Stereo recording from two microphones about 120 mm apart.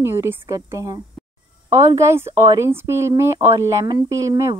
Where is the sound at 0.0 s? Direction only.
20° right (ahead or behind).